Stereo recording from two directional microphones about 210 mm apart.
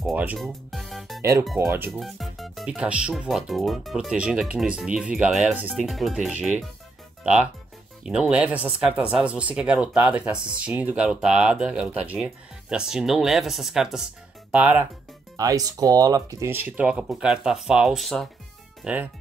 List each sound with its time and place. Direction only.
0.0 s music: 5° right (ahead or behind)
1.6 s speech: 15° right (ahead or behind)
1.9 s speech: centre (ahead or behind)
8.0 s speech: 5° right (ahead or behind)